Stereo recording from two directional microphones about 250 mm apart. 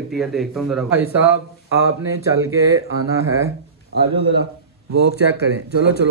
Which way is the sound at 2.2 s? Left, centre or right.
Centre.